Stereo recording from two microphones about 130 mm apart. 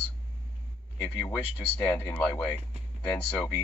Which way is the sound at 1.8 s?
15° left (ahead or behind).